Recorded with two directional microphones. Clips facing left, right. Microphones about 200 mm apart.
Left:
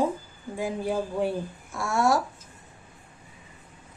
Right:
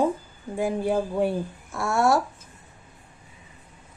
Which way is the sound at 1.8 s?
60° right (ahead or behind).